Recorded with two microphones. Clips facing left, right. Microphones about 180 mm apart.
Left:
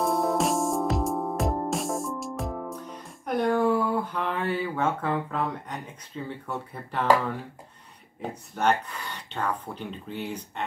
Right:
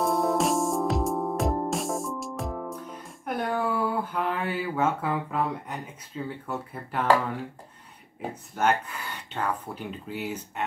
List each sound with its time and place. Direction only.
0.0 s music: centre (ahead or behind)
6.2 s speech: 5° right (ahead or behind)
8.2 s speech: 10° right (ahead or behind)